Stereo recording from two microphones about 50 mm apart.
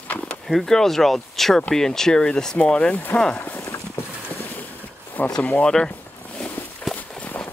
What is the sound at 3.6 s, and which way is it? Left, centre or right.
Clip-clop, left.